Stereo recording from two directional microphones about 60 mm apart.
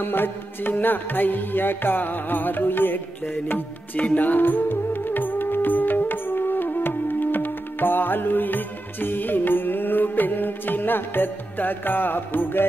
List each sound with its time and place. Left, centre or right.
0.0 s music: left